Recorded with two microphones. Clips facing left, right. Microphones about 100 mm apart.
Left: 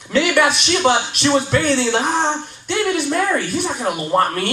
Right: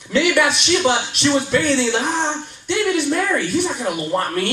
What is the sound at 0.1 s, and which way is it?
Music, 30° left (ahead or behind).